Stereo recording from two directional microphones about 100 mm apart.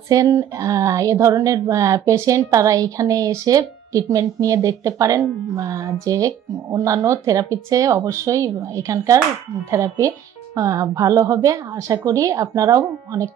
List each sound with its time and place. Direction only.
0.1 s speech: 35° right (ahead or behind)